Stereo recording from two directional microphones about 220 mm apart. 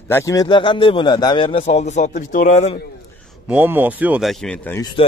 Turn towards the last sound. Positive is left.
turn(degrees=5)  # may be behind; listen again after turning